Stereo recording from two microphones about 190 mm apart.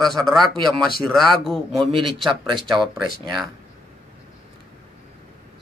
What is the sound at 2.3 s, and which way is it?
Speech, 25° right (ahead or behind).